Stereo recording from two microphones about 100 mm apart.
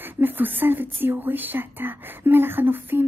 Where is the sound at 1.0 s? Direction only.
20° right (ahead or behind).